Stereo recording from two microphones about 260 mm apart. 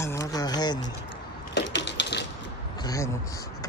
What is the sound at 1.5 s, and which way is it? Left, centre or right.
Crushing, left.